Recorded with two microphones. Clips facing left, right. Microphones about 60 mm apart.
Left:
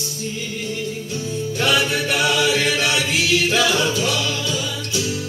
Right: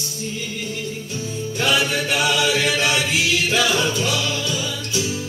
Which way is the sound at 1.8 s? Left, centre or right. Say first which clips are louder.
Left 1 dB; centre.